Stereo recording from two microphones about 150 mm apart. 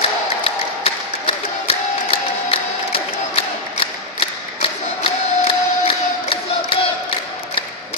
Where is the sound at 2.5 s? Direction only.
40° left (ahead or behind).